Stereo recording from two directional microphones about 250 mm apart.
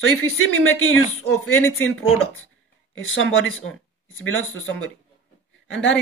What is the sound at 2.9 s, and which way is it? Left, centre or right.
Speech, left.